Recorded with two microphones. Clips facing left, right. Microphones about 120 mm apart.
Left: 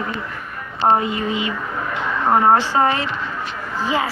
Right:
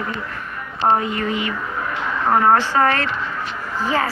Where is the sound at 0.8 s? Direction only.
15° left (ahead or behind).